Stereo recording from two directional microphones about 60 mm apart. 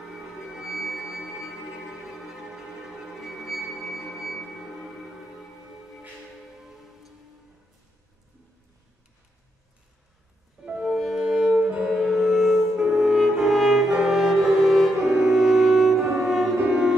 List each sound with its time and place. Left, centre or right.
0.1 s music: centre
10.6 s music: centre
10.9 s music: centre
11.2 s cello: centre
11.6 s music: centre